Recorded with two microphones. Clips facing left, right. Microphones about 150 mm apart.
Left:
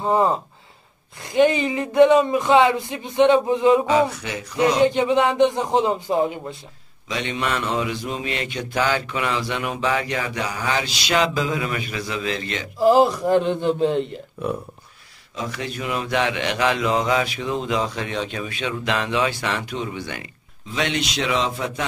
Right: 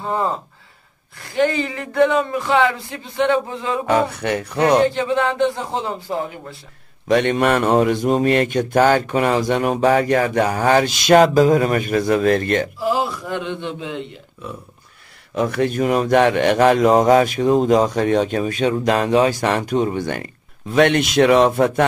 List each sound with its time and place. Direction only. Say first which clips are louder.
0.0 s speech: left 3 dB; 20° left (ahead or behind)
3.8 s speech: right 1 dB; 60° right (ahead or behind)
4.8 s speech: left 1 dB; 20° left (ahead or behind)
7.1 s speech: right 10 dB; 55° right (ahead or behind)
12.7 s a sound: left 6 dB; 40° left (ahead or behind)
15.3 s speech: right 10 dB; 55° right (ahead or behind)